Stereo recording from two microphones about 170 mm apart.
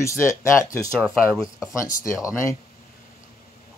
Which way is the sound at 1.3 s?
Centre (ahead or behind).